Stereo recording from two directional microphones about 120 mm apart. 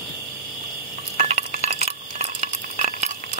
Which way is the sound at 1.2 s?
85° right.